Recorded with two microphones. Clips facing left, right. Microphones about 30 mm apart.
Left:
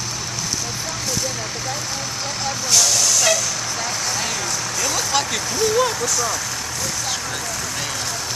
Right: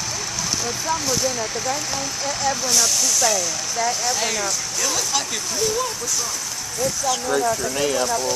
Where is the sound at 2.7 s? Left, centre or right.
Left.